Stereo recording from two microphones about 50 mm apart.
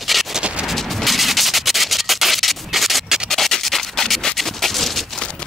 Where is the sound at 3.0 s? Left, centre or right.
Centre.